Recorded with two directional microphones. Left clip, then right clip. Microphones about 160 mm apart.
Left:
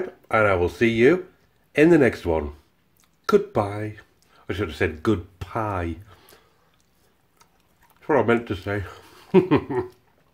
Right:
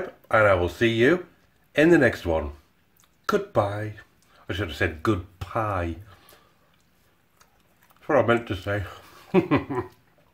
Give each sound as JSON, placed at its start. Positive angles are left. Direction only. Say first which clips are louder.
{"t": 0.3, "sound": "speech", "louder": "even", "side_deg": 20}
{"t": 8.0, "sound": "speech", "louder": "left 1 dB", "side_deg": 20}